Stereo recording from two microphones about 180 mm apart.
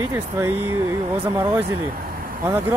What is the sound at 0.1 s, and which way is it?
Speech, 10° right (ahead or behind).